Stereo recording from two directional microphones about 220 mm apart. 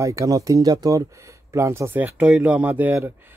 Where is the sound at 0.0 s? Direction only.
15° right (ahead or behind).